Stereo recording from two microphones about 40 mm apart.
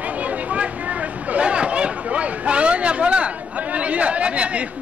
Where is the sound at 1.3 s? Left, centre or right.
Right.